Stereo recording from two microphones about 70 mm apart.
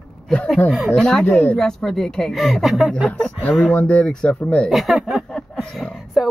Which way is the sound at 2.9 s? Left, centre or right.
Centre.